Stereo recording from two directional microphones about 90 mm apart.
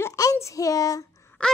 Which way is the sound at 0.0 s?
40° left (ahead or behind).